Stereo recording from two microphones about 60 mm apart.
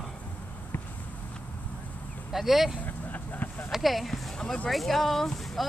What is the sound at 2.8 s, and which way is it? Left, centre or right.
Vehicle, left.